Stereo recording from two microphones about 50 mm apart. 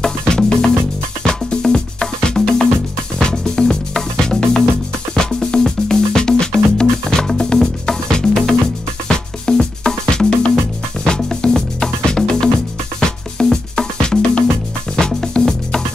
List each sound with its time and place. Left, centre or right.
0.3 s music: centre